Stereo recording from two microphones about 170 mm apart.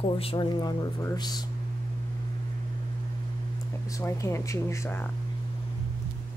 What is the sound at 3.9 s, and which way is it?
Speech, 15° left (ahead or behind).